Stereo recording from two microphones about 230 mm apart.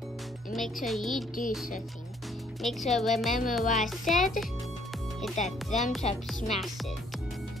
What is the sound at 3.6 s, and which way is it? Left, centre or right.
Music, left.